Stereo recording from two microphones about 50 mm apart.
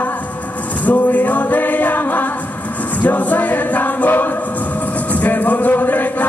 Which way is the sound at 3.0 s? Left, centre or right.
Left.